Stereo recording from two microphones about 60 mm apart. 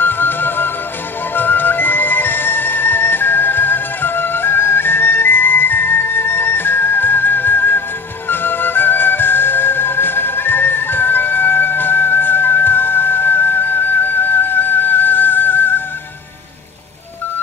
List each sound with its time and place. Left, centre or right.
0.0 s music: left